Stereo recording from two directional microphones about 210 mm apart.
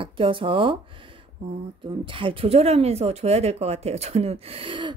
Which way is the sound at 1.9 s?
25° right (ahead or behind).